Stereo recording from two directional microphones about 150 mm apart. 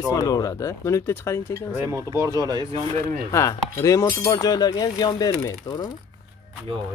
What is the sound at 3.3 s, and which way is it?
Speech, 20° left (ahead or behind).